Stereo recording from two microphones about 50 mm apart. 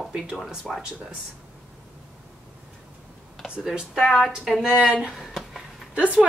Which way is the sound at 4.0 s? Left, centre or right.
Centre.